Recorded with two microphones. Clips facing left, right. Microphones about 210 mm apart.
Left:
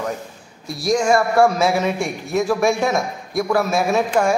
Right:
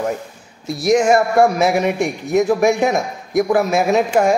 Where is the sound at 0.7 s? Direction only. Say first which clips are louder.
Right 4 dB; 20° right (ahead or behind).